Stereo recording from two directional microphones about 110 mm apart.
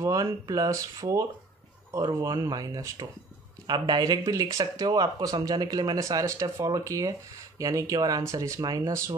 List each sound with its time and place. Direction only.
0.0 s speech: 30° right (ahead or behind)